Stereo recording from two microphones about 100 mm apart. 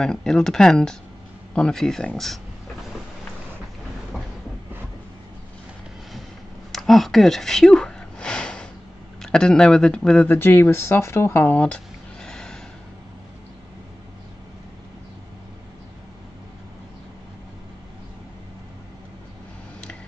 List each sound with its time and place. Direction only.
0.0 s speech: 5° left (ahead or behind)
6.7 s a sound: centre (ahead or behind)
9.2 s speech: 5° left (ahead or behind)
10.3 s speech: 20° left (ahead or behind)